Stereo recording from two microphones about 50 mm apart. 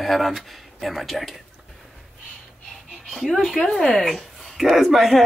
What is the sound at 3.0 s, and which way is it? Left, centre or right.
Speech, centre.